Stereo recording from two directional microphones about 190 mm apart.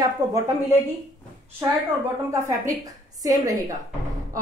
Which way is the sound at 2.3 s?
15° right (ahead or behind).